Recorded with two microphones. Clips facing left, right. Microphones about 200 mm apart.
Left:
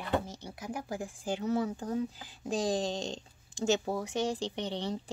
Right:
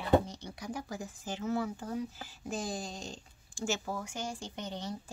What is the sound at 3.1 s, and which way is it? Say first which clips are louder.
Speech: left 6 dB; 20° left (ahead or behind).